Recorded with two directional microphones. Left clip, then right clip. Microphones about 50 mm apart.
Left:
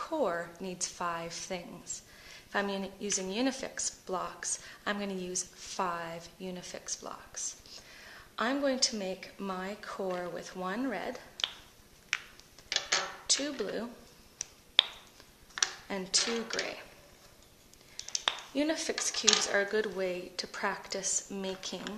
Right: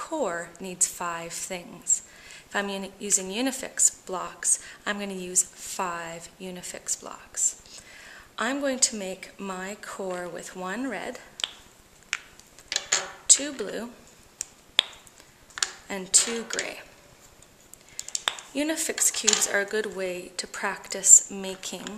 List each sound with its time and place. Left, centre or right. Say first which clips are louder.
0.0 s a woman's voice: right 3 dB; right
10.0 s speech: right 3 dB; right
10.4 s speech: right 3 dB; right
12.1 s a sound: right 2 dB; centre
13.4 s speech: right 3 dB; right
14.4 s finger snapping: right 3 dB; centre
14.8 s a sound: right 2 dB; right
15.6 s a sound: right 2 dB; centre
15.9 s speech: right 8 dB; right
16.3 s speech: right 3 dB; centre
17.9 s a sound: right 3 dB; right
19.4 s speech: right 4 dB; right